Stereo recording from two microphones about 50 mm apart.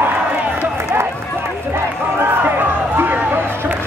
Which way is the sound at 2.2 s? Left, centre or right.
Right.